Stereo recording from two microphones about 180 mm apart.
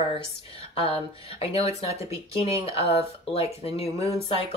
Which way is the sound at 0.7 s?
30° left (ahead or behind).